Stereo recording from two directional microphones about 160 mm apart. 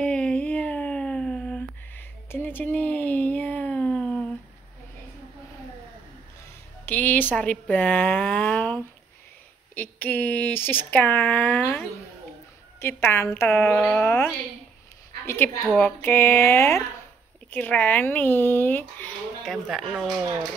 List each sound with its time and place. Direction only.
0.0 s a sound: 5° left (ahead or behind)
6.9 s speech: 10° left (ahead or behind)
12.8 s speech: 15° left (ahead or behind)
13.7 s speech: 5° left (ahead or behind)
14.0 s speech: 15° left (ahead or behind)